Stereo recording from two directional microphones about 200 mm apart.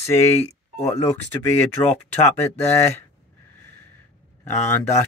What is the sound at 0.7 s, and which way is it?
Speech, 15° left (ahead or behind).